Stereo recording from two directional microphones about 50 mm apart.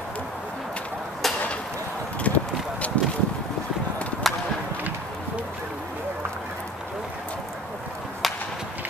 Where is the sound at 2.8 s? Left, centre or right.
Left.